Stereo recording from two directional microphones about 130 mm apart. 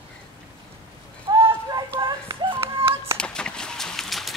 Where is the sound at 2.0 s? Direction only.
30° right (ahead or behind).